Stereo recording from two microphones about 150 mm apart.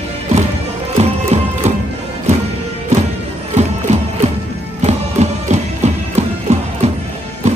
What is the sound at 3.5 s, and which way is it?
Music, 45° right (ahead or behind).